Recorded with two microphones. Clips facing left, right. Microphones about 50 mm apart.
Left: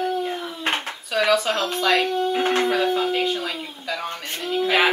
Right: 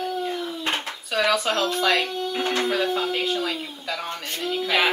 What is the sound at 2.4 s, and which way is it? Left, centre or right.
Speech, left.